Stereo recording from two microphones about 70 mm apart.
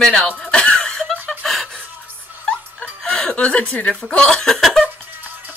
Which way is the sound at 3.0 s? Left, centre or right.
Centre.